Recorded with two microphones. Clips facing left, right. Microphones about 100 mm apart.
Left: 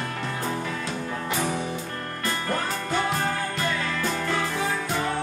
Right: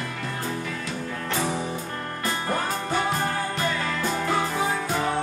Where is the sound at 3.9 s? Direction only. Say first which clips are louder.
Right 2 dB; 10° right (ahead or behind).